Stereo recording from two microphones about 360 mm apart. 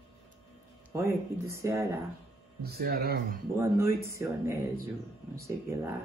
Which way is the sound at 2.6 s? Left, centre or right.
Right.